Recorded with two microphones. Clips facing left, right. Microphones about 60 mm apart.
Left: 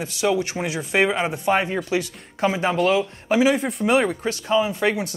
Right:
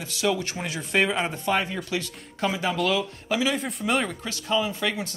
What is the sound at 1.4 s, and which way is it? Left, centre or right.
Speech, left.